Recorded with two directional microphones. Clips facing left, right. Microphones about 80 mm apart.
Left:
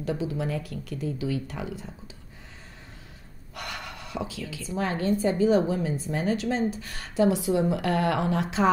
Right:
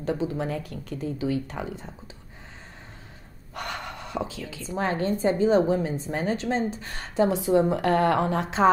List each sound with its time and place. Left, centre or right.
0.0 s speech: right
3.5 s speech: right